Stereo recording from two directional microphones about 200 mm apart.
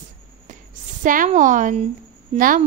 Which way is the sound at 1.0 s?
40° right (ahead or behind).